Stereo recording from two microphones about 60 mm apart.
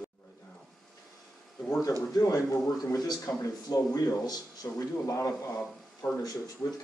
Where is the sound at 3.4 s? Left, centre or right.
Left.